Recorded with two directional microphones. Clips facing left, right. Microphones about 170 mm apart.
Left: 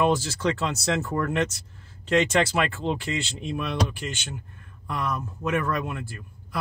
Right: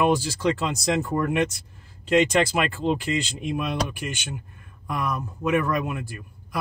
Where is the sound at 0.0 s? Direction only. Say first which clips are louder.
Right 1 dB; 15° right (ahead or behind).